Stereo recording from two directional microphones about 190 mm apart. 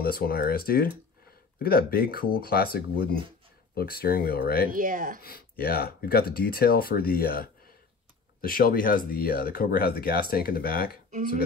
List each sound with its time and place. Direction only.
0.0 s speech: 50° left (ahead or behind)
4.6 s speech: 45° right (ahead or behind)
5.2 s speech: 50° left (ahead or behind)
11.1 s speech: 45° right (ahead or behind)